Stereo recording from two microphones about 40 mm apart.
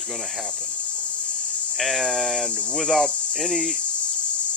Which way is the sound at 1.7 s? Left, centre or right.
Centre.